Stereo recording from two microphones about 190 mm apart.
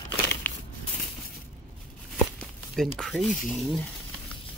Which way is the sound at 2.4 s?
Centre (ahead or behind).